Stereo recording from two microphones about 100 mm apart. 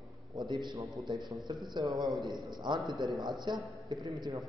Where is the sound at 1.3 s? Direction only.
40° right (ahead or behind).